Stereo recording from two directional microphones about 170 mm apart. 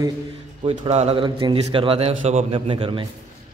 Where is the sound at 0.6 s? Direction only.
30° right (ahead or behind).